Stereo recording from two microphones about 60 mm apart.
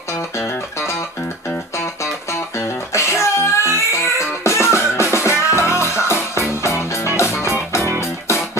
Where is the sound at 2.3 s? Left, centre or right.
Left.